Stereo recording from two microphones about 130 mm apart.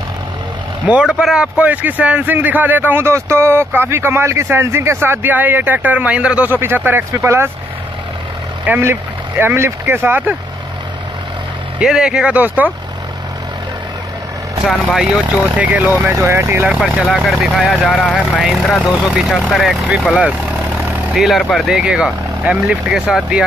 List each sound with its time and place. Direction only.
0.8 s a man's voice: 5° right (ahead or behind)
8.6 s a man's voice: 15° right (ahead or behind)
11.8 s a man's voice: 5° right (ahead or behind)
15.0 s a man's voice: 10° right (ahead or behind)
16.6 s speech: 5° right (ahead or behind)